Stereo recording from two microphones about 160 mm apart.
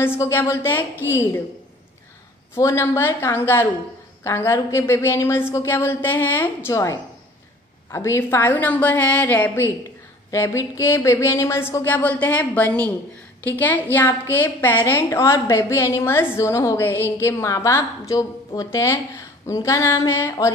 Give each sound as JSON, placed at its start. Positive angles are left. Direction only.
{"t": 0.0, "sound": "a woman's voice", "side_deg": 15}
{"t": 2.5, "sound": "a woman's voice", "side_deg": 15}